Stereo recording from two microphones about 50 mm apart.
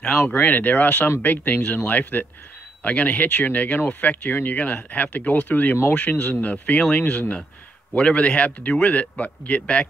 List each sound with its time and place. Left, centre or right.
0.3 s a man's voice: left